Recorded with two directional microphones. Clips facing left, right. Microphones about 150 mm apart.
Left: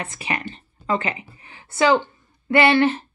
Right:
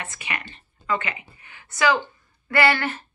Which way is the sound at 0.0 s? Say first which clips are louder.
Left 5 dB; 30° left (ahead or behind).